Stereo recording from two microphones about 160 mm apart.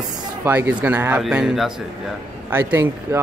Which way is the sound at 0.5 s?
10° right (ahead or behind).